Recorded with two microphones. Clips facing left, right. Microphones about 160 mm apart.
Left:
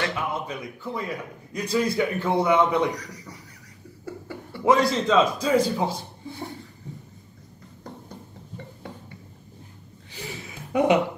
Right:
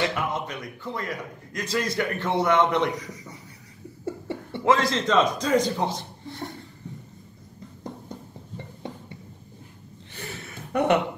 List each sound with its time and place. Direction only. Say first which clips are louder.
0.3 s a man's voice: even; 5° left (ahead or behind)
2.9 s a man's voice: right 1 dB; 20° right (ahead or behind)
4.0 s cough: right 4 dB; 25° right (ahead or behind)
4.6 s a man's voice: left 2 dB; 10° left (ahead or behind)
10.1 s a sound: left 1 dB; 10° left (ahead or behind)